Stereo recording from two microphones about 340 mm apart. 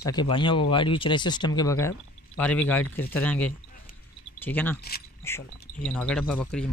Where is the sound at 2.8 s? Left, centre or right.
Left.